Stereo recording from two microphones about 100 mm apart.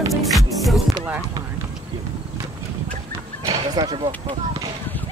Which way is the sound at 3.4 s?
40° right (ahead or behind).